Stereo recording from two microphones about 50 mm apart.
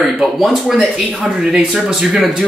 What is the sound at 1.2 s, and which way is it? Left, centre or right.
Speech, centre.